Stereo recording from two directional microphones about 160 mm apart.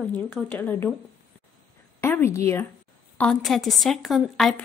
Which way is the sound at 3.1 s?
5° left (ahead or behind).